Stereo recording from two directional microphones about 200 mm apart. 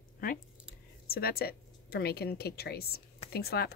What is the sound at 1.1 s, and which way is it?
Speech, 50° left (ahead or behind).